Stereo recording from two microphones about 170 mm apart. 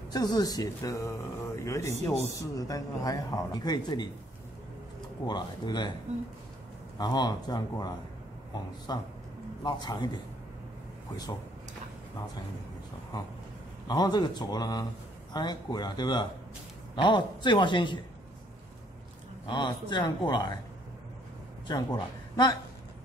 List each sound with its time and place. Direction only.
0.1 s speech: 25° left (ahead or behind)
5.2 s speech: 25° left (ahead or behind)
7.0 s speech: 25° left (ahead or behind)
13.8 s speech: 25° left (ahead or behind)
19.4 s speech: 25° left (ahead or behind)
21.6 s speech: 25° left (ahead or behind)